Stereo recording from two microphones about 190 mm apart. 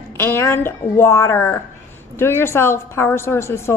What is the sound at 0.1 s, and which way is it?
A woman's voice, 15° left (ahead or behind).